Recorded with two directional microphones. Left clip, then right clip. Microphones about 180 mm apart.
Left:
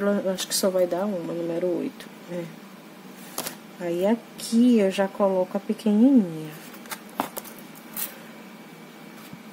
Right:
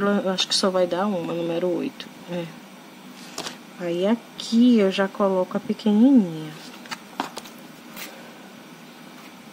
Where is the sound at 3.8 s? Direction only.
5° right (ahead or behind).